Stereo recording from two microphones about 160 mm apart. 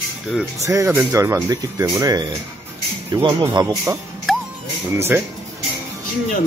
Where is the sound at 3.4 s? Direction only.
20° right (ahead or behind).